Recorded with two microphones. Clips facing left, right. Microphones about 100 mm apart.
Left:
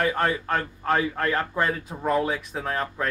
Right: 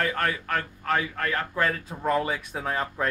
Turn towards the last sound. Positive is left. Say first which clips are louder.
# left 1 dB
turn(degrees=0)  # may be behind; listen again after turning